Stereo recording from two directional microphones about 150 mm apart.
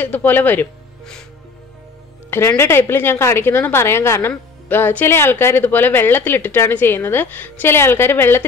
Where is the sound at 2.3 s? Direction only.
15° left (ahead or behind).